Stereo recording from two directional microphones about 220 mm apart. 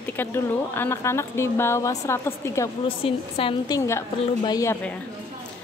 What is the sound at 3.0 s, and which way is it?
A woman's voice, 25° left (ahead or behind).